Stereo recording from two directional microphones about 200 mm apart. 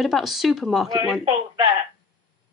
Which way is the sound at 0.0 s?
Centre (ahead or behind).